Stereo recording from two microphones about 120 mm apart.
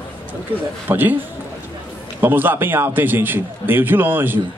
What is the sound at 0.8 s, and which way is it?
A man's voice, 15° right (ahead or behind).